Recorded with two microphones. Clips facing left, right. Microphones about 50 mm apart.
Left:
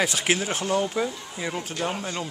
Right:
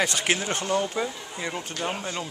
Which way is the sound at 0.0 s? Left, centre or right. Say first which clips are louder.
Left 1 dB; centre.